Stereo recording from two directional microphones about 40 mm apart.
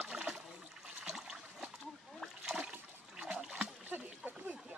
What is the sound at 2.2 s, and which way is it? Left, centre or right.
Splash, centre.